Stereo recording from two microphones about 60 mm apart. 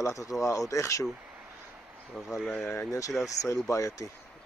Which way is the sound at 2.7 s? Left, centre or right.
Left.